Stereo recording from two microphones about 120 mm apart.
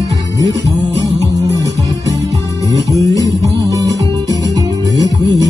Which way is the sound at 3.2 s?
30° right (ahead or behind).